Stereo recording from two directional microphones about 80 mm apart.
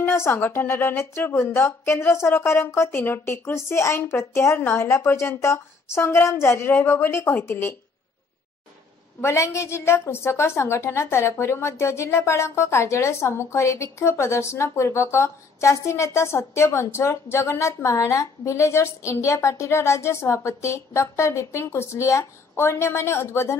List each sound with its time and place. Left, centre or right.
0.1 s a woman's voice: left
9.2 s a woman's voice: left